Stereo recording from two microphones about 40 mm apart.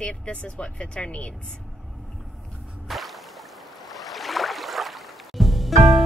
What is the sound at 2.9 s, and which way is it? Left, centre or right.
Music, centre.